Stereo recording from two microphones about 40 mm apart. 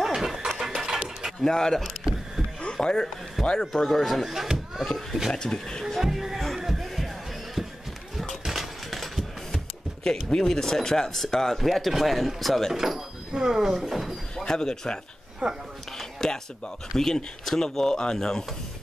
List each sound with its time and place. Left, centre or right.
0.0 s a sound: centre
1.4 s speech: centre
1.8 s vehicle: centre
2.6 s a sound: centre
3.5 s speech: centre
5.3 s speech: centre
5.9 s speech: centre
6.6 s music: centre
7.6 s a sound: centre
10.0 s speech: centre
12.7 s speech: centre
14.3 s speech: centre
15.4 s speech: right
16.0 s speech: centre